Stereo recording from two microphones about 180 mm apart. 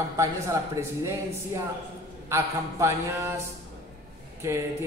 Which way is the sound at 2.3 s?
15° right (ahead or behind).